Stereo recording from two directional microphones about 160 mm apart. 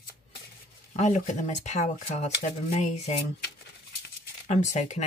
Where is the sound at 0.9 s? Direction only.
45° left (ahead or behind).